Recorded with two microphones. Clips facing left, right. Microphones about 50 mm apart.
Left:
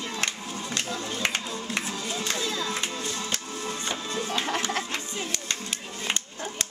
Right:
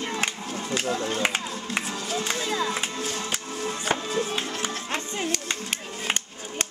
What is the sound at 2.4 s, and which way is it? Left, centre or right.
Music, right.